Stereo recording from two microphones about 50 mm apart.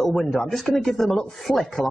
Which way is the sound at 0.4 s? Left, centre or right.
Centre.